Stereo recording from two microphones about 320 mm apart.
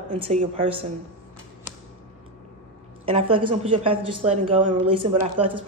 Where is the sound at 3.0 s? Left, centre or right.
Centre.